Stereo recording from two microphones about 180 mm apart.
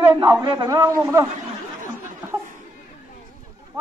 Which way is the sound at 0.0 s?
15° right (ahead or behind).